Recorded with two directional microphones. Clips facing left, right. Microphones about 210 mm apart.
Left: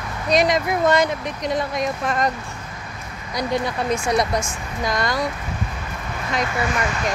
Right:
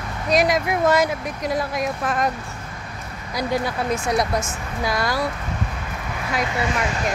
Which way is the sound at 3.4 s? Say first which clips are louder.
Even; 5° right (ahead or behind).